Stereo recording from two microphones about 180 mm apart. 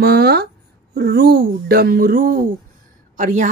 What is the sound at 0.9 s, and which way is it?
Speech, 60° right (ahead or behind).